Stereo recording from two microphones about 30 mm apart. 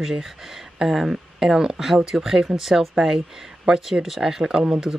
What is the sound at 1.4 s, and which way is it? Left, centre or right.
Speech, centre.